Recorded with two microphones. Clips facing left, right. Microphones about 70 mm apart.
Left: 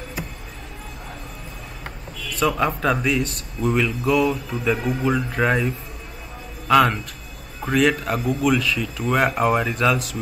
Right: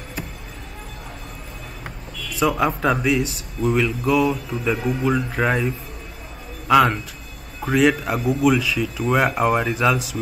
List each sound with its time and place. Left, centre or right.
2.3 s speech: centre
6.7 s speech: centre